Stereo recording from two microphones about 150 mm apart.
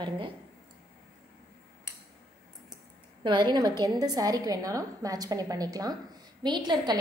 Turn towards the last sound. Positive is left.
turn(degrees=-30)  # may be behind; listen again after turning